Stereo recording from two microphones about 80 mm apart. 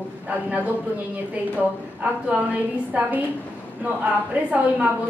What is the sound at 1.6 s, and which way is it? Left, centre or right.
A woman's voice, centre.